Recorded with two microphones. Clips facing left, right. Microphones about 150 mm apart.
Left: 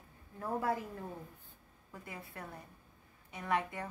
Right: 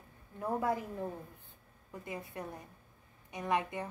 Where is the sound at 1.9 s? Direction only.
20° right (ahead or behind).